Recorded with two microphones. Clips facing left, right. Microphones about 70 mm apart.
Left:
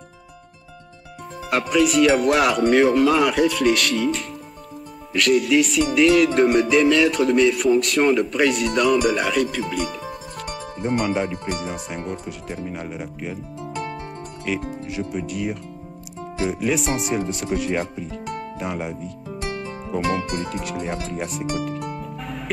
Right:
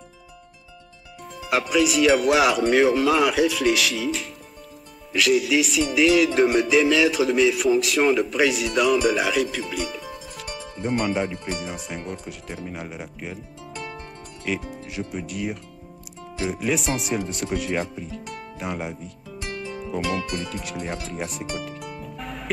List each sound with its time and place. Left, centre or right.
1.5 s music: centre
14.5 s music: centre
19.2 s music: left
21.1 s music: centre